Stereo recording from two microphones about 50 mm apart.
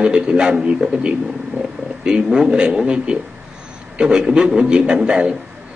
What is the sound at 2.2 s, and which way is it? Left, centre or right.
Speech, centre.